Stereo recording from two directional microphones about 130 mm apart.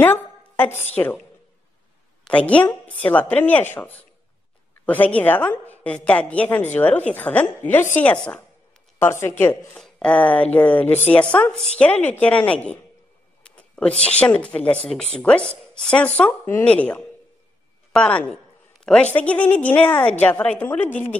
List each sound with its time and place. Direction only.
0.0 s a sound: 15° left (ahead or behind)
0.6 s a woman's voice: 15° left (ahead or behind)
2.2 s a woman's voice: 10° left (ahead or behind)
4.8 s a woman's voice: 15° left (ahead or behind)
9.8 s a woman's voice: 5° left (ahead or behind)
13.4 s a sound: 10° left (ahead or behind)
14.0 s a woman's voice: 10° left (ahead or behind)